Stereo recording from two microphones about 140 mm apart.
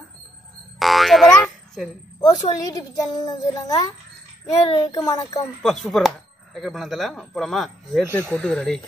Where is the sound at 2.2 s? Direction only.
30° left (ahead or behind).